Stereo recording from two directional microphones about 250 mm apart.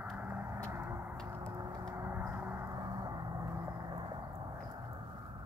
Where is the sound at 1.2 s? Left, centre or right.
Centre.